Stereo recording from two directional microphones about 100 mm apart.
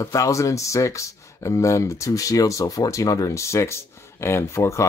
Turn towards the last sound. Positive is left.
turn(degrees=30)  # may be behind; listen again after turning